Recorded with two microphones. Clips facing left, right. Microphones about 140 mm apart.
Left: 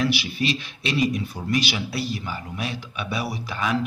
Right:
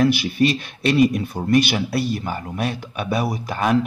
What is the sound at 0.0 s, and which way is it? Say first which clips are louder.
Speech: right 7 dB; 50° right (ahead or behind).